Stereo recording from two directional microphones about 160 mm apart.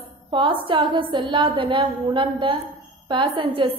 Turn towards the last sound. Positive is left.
turn(degrees=-30)  # may be behind; listen again after turning